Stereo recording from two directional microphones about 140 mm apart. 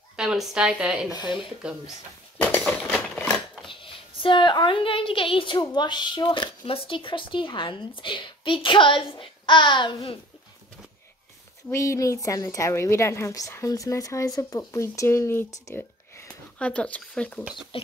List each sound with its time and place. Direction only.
0.1 s a woman's voice: 5° right (ahead or behind)
1.1 s a woman's voice: 35° left (ahead or behind)
2.4 s a sound: 15° left (ahead or behind)
2.9 s typewriter: centre (ahead or behind)
4.2 s a woman's voice: 35° left (ahead or behind)
11.7 s a woman's voice: 20° left (ahead or behind)
17.7 s a woman's voice: 40° left (ahead or behind)